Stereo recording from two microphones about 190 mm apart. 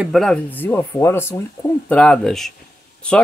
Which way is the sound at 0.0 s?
Centre (ahead or behind).